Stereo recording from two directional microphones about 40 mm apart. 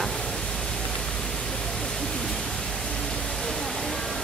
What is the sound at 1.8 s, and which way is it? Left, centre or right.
Pink noise, centre.